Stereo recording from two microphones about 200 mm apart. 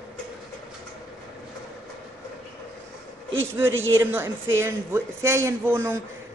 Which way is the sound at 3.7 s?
80° right.